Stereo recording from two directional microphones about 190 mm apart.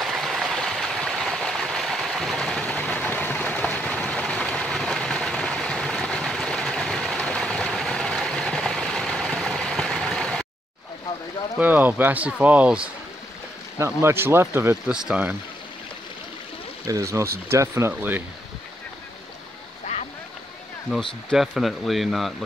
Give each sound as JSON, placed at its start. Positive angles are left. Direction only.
{"t": 0.0, "sound": "a sound", "side_deg": 0}
{"t": 11.5, "sound": "speech", "side_deg": -10}
{"t": 16.8, "sound": "speech", "side_deg": -15}
{"t": 20.9, "sound": "speech", "side_deg": -5}